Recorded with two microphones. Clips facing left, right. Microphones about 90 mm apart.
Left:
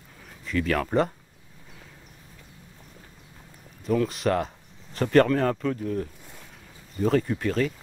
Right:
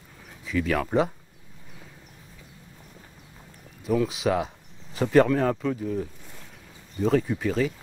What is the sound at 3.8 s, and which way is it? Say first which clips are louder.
Speech: even; 5° right (ahead or behind).